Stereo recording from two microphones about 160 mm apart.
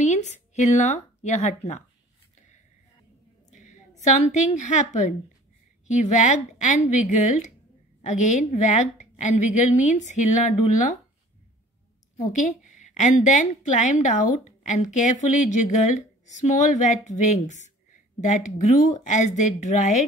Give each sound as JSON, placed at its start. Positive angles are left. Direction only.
{"t": 0.0, "sound": "speech", "side_deg": 45}
{"t": 3.4, "sound": "a sound", "side_deg": 50}
{"t": 4.6, "sound": "a woman's voice", "side_deg": 50}
{"t": 12.4, "sound": "a woman's voice", "side_deg": 50}